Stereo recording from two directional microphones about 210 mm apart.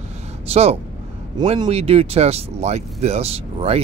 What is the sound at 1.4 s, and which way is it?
Speech, 25° right (ahead or behind).